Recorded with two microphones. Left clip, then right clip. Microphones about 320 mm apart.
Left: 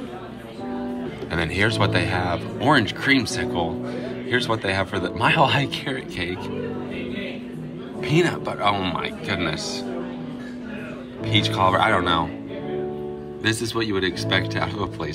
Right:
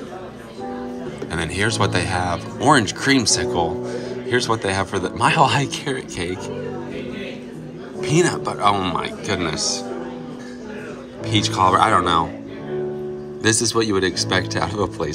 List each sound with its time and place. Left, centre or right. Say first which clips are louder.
1.3 s speech: even; centre
8.0 s speech: right 3 dB; centre
11.2 s speech: right 2 dB; centre
13.4 s speech: right 5 dB; centre